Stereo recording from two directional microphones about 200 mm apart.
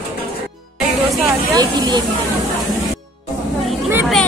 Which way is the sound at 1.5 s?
20° right (ahead or behind).